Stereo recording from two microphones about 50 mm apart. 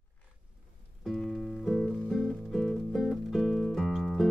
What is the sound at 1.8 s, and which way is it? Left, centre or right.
Music, centre.